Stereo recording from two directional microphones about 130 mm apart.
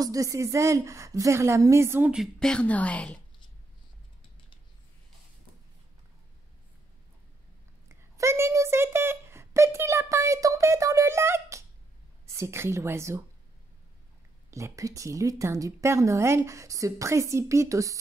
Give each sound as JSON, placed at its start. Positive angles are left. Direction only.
{"t": 0.0, "sound": "a woman's voice", "side_deg": -25}
{"t": 2.4, "sound": "a woman's voice", "side_deg": 10}
{"t": 8.2, "sound": "a sound", "side_deg": -20}
{"t": 12.3, "sound": "a woman's voice", "side_deg": -20}
{"t": 14.5, "sound": "a woman's voice", "side_deg": -25}